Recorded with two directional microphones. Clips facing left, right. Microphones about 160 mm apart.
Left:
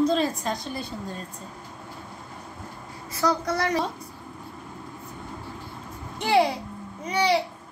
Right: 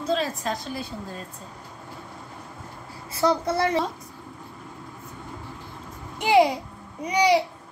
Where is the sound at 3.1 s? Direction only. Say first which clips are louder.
Right 2 dB; 25° right (ahead or behind).